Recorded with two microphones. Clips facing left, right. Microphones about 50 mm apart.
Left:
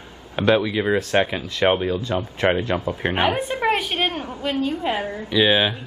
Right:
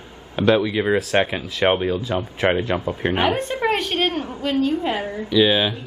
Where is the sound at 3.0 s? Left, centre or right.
Centre.